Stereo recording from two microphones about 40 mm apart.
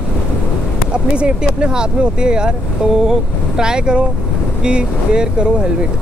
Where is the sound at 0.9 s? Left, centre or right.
Right.